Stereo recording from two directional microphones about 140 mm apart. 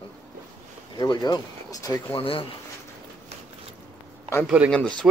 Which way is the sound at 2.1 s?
40° left (ahead or behind).